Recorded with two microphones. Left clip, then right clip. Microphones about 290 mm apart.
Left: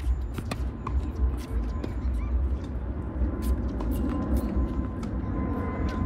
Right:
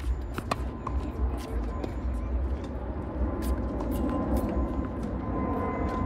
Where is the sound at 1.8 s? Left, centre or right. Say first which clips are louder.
Even; right.